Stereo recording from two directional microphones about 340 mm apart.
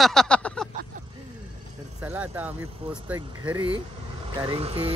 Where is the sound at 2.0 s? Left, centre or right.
Centre.